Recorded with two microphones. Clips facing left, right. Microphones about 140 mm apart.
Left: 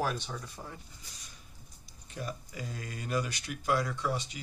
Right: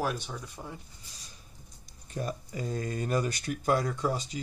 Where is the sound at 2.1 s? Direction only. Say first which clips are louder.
Right 5 dB; 40° right (ahead or behind).